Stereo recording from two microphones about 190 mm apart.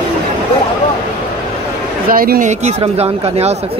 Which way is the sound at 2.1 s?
50° right (ahead or behind).